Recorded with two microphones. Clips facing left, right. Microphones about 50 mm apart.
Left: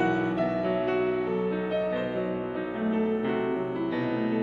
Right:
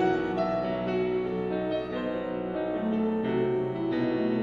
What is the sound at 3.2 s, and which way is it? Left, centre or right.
Music, centre.